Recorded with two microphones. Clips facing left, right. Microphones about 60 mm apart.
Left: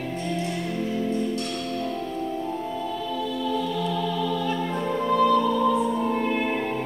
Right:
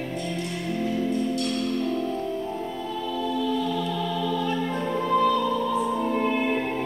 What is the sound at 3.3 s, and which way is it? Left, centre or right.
Music, centre.